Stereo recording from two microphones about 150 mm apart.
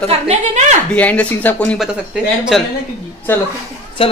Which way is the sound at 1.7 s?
Centre (ahead or behind).